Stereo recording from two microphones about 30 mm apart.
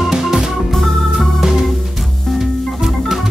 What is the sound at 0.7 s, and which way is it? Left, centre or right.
Organ, centre.